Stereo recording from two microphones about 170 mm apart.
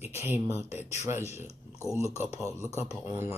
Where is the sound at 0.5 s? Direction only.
40° left (ahead or behind).